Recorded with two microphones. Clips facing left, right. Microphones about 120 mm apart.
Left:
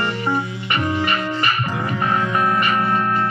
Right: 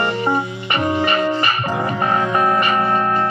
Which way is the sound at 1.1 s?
25° right (ahead or behind).